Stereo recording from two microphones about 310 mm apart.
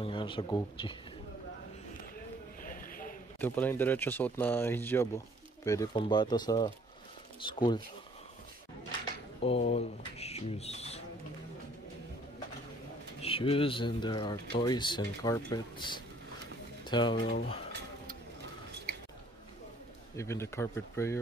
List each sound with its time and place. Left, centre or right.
0.0 s speech: centre
2.6 s a sound: left
3.3 s speech: centre
9.4 s speech: centre
13.2 s speech: centre
20.2 s speech: centre